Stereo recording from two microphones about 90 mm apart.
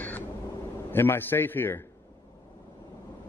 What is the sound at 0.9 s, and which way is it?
Speech, 25° left (ahead or behind).